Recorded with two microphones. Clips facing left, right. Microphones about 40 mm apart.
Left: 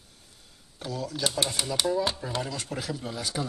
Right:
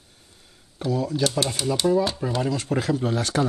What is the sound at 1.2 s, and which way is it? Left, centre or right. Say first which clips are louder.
Speech: right 2 dB; centre.